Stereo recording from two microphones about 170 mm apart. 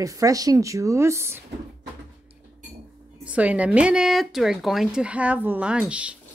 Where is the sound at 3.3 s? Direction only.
10° right (ahead or behind).